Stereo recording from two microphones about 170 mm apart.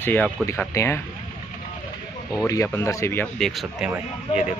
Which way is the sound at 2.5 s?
15° left (ahead or behind).